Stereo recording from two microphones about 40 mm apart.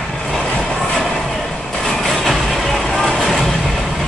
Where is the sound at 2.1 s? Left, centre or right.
Centre.